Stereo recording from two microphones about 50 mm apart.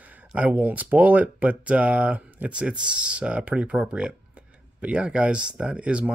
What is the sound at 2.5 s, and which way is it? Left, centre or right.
Speech, centre.